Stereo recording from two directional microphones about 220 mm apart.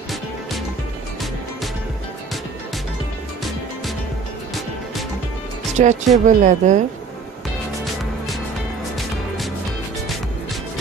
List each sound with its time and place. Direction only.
5.8 s speech: 35° right (ahead or behind)